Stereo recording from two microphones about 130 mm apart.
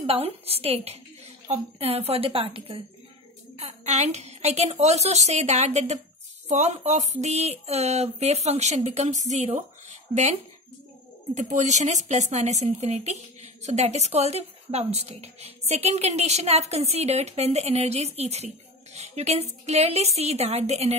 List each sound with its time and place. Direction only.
0.0 s a woman's voice: 50° right (ahead or behind)
3.5 s speech: 55° right (ahead or behind)